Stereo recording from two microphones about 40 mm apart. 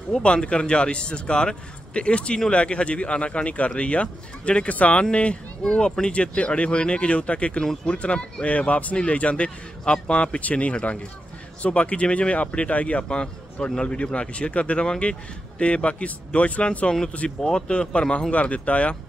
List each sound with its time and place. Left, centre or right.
0.1 s speech: left
17.4 s speech: centre